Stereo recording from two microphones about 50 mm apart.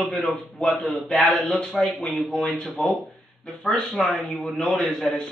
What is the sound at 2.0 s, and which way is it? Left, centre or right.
Speech, left.